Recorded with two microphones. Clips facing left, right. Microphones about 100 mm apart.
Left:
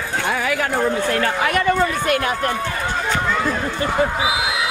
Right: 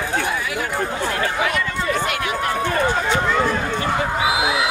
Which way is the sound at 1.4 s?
55° left (ahead or behind).